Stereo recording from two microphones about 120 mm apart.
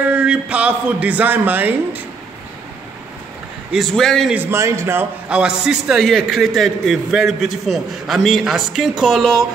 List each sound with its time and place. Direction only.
0.1 s a man's voice: 10° right (ahead or behind)
3.7 s a man's voice: centre (ahead or behind)
4.3 s a man's voice: 20° right (ahead or behind)
5.3 s a man's voice: 5° right (ahead or behind)